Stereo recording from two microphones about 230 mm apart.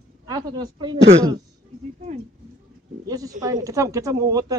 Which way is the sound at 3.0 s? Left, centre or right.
Centre.